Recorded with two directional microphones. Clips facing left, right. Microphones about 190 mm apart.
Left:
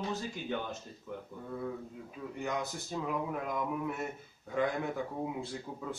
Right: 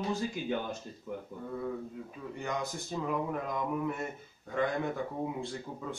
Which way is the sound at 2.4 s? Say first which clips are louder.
Even; 5° left (ahead or behind).